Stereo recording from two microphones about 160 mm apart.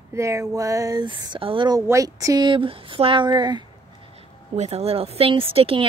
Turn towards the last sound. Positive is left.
turn(degrees=-35)  # may be behind; listen again after turning